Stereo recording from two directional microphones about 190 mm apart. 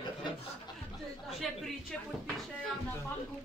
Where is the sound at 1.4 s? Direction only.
Centre (ahead or behind).